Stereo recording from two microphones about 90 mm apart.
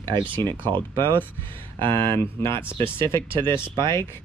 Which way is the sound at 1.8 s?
60° right (ahead or behind).